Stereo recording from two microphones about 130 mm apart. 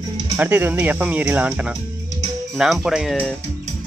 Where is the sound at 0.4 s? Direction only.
15° right (ahead or behind).